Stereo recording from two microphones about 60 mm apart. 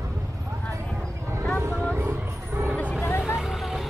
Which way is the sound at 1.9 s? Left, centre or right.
Right.